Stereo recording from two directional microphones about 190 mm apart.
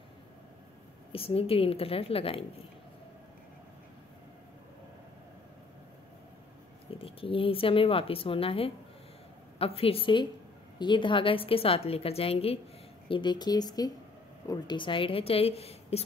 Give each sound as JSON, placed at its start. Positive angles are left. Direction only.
{"t": 1.1, "sound": "a woman's voice", "side_deg": 30}
{"t": 6.9, "sound": "a woman's voice", "side_deg": 30}